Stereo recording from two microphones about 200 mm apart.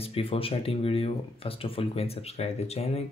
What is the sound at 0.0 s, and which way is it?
Speech, 30° left (ahead or behind).